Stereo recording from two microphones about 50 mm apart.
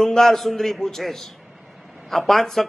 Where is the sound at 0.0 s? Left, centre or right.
Centre.